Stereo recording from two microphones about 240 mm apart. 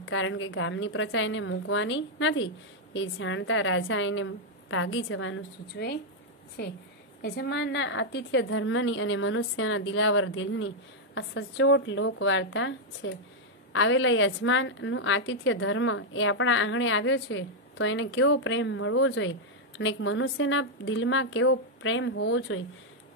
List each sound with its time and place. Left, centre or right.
0.0 s a woman's voice: left
7.2 s a woman's voice: left